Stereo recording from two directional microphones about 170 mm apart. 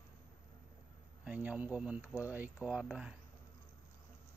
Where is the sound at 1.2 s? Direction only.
10° right (ahead or behind).